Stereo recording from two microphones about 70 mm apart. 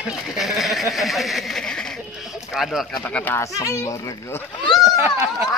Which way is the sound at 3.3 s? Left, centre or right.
Left.